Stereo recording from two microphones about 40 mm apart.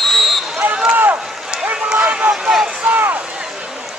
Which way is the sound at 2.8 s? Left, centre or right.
Right.